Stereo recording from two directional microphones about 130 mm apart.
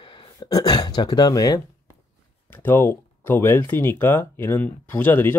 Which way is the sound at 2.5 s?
15° left (ahead or behind).